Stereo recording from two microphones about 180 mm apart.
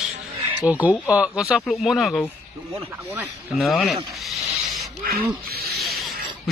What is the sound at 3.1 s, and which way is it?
Speech, 10° right (ahead or behind).